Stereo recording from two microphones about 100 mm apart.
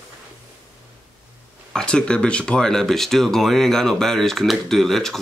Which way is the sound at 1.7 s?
10° left (ahead or behind).